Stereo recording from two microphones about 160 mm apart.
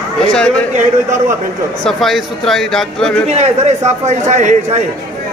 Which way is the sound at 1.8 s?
Centre (ahead or behind).